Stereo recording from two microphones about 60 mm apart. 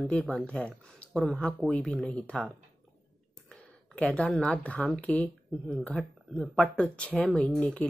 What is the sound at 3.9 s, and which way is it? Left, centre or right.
Speech, left.